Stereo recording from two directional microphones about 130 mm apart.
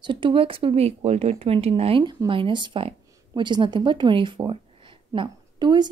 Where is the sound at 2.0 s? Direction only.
35° right (ahead or behind).